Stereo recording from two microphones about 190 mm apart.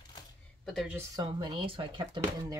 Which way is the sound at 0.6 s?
Centre (ahead or behind).